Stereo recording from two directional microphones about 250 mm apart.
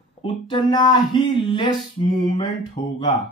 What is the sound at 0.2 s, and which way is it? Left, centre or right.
Speech, centre.